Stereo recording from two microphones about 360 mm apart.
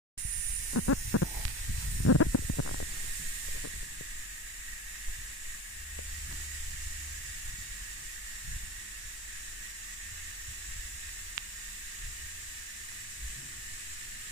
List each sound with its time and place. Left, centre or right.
0.7 s hiss: left